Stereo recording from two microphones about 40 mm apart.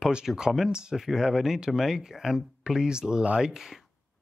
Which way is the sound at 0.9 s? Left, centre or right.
Centre.